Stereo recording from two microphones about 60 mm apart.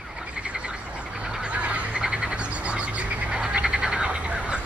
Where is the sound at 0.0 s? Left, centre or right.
Centre.